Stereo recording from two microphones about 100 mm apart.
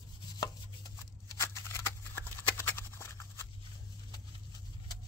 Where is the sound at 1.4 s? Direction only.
25° left (ahead or behind).